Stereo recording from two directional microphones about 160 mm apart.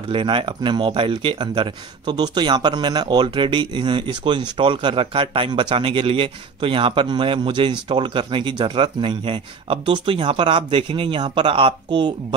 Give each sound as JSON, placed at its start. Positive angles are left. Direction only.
{"t": 0.1, "sound": "speech", "side_deg": -35}